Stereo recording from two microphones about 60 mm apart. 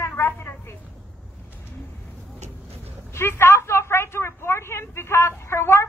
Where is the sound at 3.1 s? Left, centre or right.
Left.